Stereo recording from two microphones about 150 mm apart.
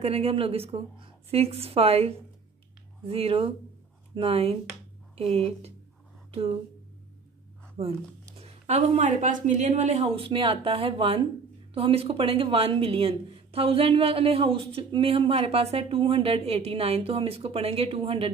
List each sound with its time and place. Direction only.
0.0 s speech: 45° right (ahead or behind)
7.8 s speech: 40° right (ahead or behind)